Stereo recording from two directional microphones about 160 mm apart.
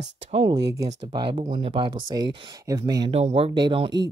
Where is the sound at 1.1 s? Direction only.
30° right (ahead or behind).